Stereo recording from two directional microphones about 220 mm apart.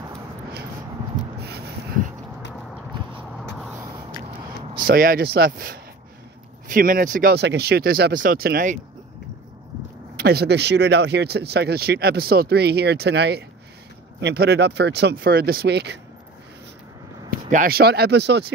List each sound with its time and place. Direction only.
4.8 s speech: 40° right (ahead or behind)
10.1 s speech: 45° right (ahead or behind)
17.5 s speech: 40° right (ahead or behind)